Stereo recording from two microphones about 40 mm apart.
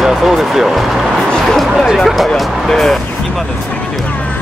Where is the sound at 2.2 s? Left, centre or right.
Centre.